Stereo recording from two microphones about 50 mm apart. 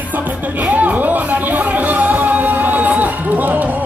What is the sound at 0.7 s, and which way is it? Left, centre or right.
Music, right.